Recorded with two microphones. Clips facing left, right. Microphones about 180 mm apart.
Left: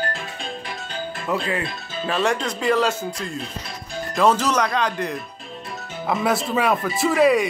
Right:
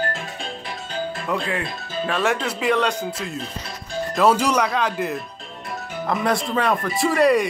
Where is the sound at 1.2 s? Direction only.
Centre (ahead or behind).